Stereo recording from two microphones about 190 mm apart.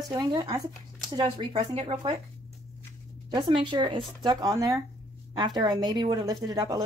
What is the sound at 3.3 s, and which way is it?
Speech, 25° right (ahead or behind).